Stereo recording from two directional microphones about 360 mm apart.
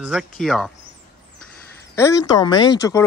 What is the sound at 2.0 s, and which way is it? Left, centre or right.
Speech, centre.